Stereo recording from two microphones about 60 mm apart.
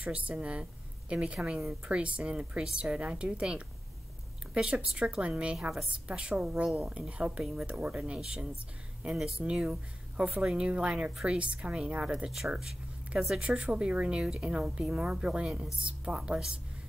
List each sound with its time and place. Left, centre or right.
0.0 s a woman's voice: right
13.4 s speech: centre